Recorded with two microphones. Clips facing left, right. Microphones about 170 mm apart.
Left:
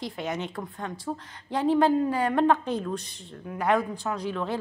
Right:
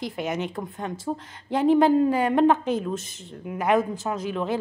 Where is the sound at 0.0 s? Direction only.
20° right (ahead or behind).